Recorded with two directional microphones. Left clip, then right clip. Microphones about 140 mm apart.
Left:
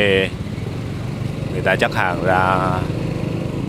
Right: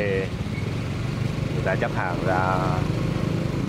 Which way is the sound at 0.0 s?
55° left (ahead or behind).